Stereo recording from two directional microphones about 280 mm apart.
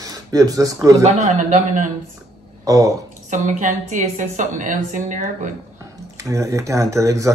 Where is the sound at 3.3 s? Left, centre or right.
Right.